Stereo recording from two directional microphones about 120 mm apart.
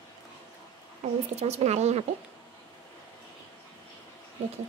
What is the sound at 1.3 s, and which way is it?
Speech, 60° right (ahead or behind).